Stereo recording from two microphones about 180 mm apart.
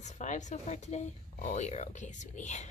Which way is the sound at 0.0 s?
40° left (ahead or behind).